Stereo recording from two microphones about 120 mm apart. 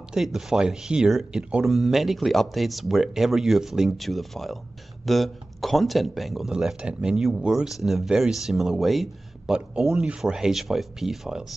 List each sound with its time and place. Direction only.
0.1 s speech: 5° right (ahead or behind)